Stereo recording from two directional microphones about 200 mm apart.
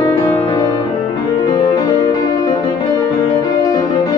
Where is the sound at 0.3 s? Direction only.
10° left (ahead or behind).